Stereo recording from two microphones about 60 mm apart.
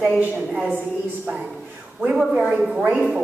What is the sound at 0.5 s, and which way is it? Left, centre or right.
Speech, centre.